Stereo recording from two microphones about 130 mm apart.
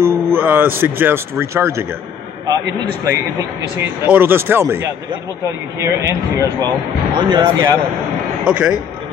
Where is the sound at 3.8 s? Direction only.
15° right (ahead or behind).